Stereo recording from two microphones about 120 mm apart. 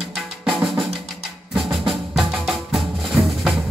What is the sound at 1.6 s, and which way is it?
Music, 50° right (ahead or behind).